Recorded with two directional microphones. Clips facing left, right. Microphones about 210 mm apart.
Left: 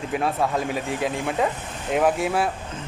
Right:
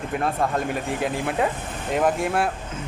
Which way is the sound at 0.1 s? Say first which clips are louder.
Left 1 dB; centre (ahead or behind).